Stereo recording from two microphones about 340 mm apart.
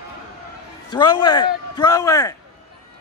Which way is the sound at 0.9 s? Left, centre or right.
Centre.